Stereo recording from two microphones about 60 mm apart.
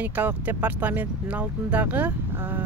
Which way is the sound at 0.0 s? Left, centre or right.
Right.